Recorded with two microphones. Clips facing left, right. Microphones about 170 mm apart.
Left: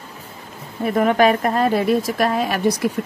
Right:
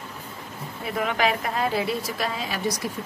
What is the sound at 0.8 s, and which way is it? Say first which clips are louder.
Speech: left 9 dB; 45° left (ahead or behind).